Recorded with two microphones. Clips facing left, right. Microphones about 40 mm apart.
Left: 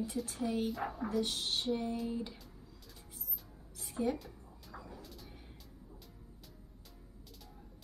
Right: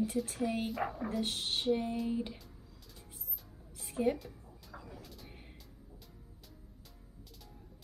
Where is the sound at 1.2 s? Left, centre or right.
Right.